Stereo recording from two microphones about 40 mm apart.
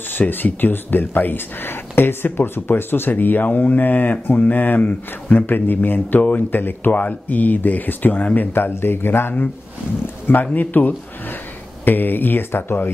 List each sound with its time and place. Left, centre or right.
0.2 s speech: left
2.0 s speech: left
7.0 s speech: left
8.5 s speech: left
10.4 s speech: left